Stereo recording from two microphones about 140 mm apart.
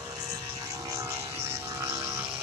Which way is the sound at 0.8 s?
20° right (ahead or behind).